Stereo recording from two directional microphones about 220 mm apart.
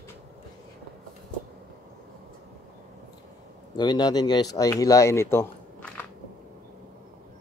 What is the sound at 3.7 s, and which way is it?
Speech, 20° left (ahead or behind).